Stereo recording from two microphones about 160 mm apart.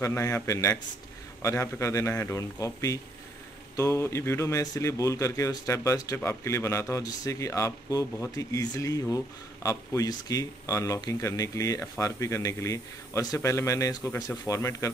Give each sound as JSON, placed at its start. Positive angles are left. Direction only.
{"t": 0.0, "sound": "a man's voice", "side_deg": 15}